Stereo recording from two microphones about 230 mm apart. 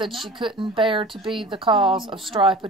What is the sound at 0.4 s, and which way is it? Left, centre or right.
Speech, right.